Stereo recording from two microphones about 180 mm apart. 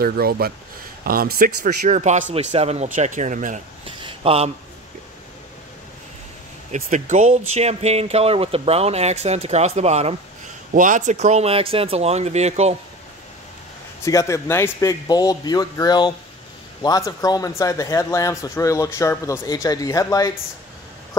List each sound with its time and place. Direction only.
0.0 s speech: 55° right (ahead or behind)
3.8 s a sound: 30° right (ahead or behind)
6.7 s speech: 40° right (ahead or behind)
14.0 s speech: 15° left (ahead or behind)